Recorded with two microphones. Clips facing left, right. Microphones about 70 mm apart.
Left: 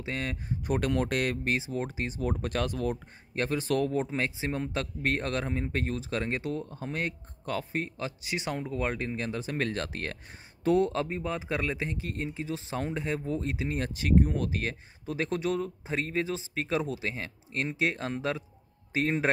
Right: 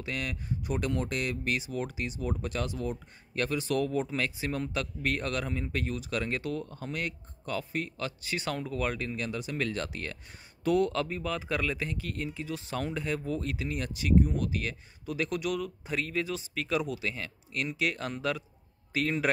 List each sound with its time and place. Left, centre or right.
0.0 s speech: left
1.5 s speech: left
2.4 s speech: left
3.3 s speech: left
4.0 s speech: left
6.9 s speech: left
8.2 s speech: centre; by 10.1 s left
10.6 s speech: left